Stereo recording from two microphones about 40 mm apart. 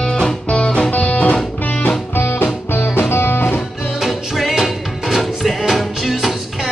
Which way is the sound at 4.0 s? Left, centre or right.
Centre.